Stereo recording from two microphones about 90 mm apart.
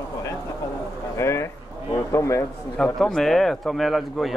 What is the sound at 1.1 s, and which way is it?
A man's voice, 30° left (ahead or behind).